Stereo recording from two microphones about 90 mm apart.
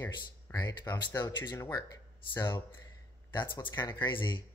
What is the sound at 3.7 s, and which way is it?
Speech, 50° left (ahead or behind).